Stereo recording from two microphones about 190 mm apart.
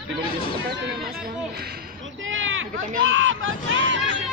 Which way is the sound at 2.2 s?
90° right.